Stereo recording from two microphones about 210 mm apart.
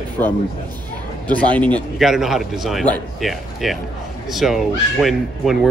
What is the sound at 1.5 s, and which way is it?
Speech, 5° left (ahead or behind).